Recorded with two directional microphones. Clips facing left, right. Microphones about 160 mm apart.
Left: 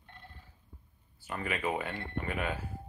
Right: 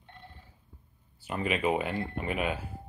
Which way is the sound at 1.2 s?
20° right (ahead or behind).